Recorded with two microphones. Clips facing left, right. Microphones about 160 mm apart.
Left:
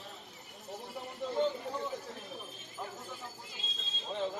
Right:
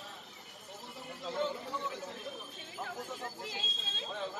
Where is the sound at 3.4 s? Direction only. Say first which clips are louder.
Right 5 dB; 90° right.